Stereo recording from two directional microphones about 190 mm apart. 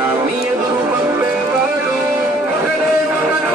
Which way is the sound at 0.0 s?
10° right (ahead or behind).